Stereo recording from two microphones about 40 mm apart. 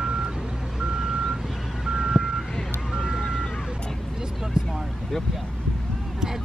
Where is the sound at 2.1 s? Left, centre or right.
Centre.